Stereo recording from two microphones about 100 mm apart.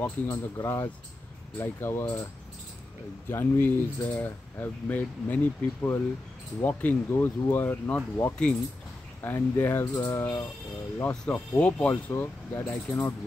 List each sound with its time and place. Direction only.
0.0 s speech: 30° left (ahead or behind)
3.3 s speech: 25° left (ahead or behind)